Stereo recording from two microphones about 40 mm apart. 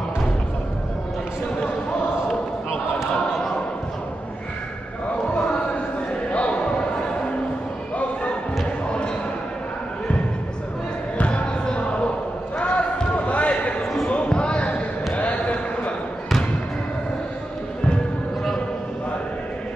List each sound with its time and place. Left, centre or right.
6.3 s basketball bounce: left
11.1 s basketball bounce: left
11.7 s a sound: left
12.5 s basketball bounce: left
14.2 s basketball bounce: left